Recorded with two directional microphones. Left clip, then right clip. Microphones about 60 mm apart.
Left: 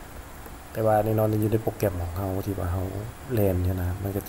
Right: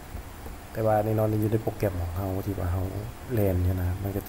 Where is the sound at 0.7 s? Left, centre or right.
Centre.